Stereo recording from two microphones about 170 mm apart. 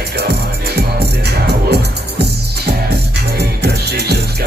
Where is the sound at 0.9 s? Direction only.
75° right (ahead or behind).